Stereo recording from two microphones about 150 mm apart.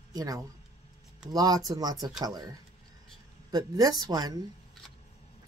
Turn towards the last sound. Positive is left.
turn(degrees=-25)  # may be behind; listen again after turning